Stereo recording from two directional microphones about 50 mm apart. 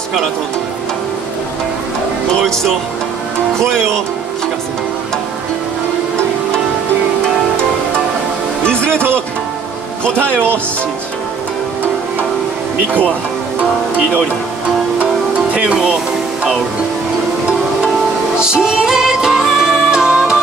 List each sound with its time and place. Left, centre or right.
2.4 s speech: centre
10.0 s speech: left
10.3 s speech: right
15.5 s speech: centre
18.4 s music: centre